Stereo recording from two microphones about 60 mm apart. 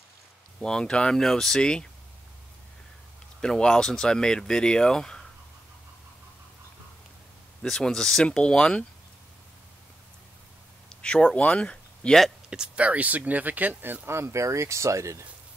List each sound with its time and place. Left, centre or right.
0.6 s speech: centre
3.3 s speech: centre
7.6 s speech: centre
11.0 s speech: centre
12.4 s speech: centre; by 15.2 s right